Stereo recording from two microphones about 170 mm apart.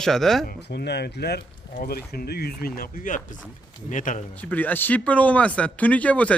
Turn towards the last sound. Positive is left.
turn(degrees=10)  # may be behind; listen again after turning